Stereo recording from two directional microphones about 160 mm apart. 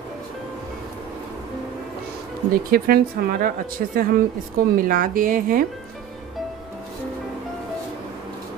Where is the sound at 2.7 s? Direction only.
65° right (ahead or behind).